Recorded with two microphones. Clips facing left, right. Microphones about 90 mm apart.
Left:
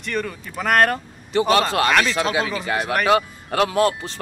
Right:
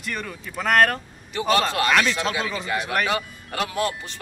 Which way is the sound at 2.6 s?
50° left (ahead or behind).